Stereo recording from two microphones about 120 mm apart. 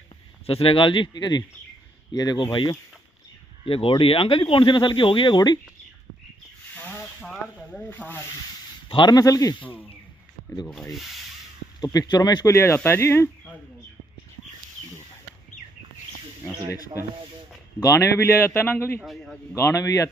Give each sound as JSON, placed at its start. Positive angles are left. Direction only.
{"t": 0.5, "sound": "speech", "side_deg": 50}
{"t": 7.2, "sound": "sizzle", "side_deg": 0}
{"t": 7.9, "sound": "sanding", "side_deg": 15}
{"t": 8.8, "sound": "speech", "side_deg": 40}
{"t": 9.6, "sound": "sanding", "side_deg": 15}
{"t": 10.7, "sound": "rub", "side_deg": 0}
{"t": 11.8, "sound": "speech", "side_deg": 30}
{"t": 12.4, "sound": "a man's voice", "side_deg": 25}
{"t": 17.7, "sound": "a man's voice", "side_deg": 25}
{"t": 18.9, "sound": "rub", "side_deg": 0}
{"t": 19.5, "sound": "a man's voice", "side_deg": 25}